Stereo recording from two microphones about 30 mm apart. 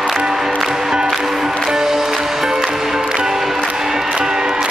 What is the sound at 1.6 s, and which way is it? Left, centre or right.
Music, centre.